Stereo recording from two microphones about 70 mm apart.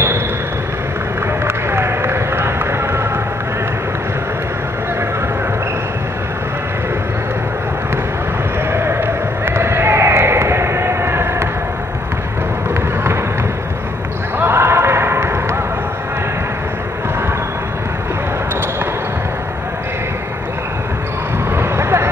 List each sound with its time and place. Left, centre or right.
1.4 s run: right
8.7 s a sound: right
14.4 s basketball bounce: right
21.5 s vehicle: right